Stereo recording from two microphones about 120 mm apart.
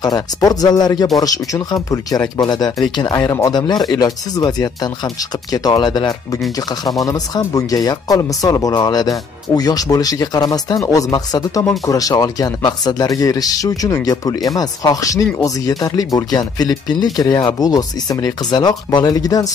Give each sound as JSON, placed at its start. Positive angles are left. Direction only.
{"t": 0.0, "sound": "speech", "side_deg": 30}